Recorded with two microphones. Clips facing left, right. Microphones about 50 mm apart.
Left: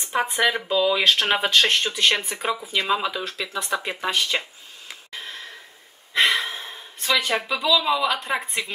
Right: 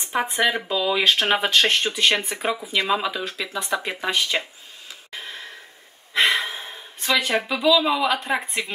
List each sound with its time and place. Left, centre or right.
0.4 s speech: centre
3.4 s speech: right
3.7 s speech: centre
5.1 s a sound: centre
8.3 s speech: centre